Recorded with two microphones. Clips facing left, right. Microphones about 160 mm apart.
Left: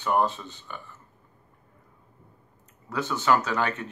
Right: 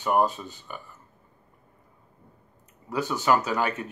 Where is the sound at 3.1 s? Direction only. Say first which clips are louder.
Even; 15° right (ahead or behind).